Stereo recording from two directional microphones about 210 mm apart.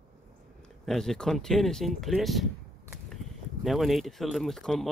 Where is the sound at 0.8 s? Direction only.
Centre (ahead or behind).